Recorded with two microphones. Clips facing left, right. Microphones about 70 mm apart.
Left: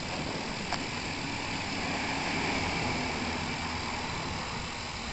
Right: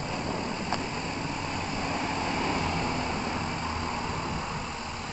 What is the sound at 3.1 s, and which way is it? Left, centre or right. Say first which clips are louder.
Vehicle: right 3 dB; right.